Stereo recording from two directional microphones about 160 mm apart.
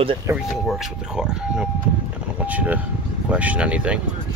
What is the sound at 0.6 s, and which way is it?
Speech, centre (ahead or behind).